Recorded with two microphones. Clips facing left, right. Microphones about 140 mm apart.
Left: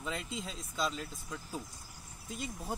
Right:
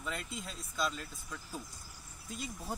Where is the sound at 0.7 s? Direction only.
15° left (ahead or behind).